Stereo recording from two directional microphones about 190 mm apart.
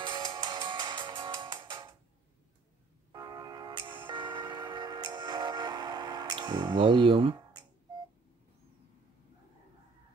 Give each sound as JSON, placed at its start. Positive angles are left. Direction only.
{"t": 0.1, "sound": "music", "side_deg": -20}
{"t": 3.1, "sound": "a sound", "side_deg": -20}
{"t": 3.9, "sound": "music", "side_deg": -25}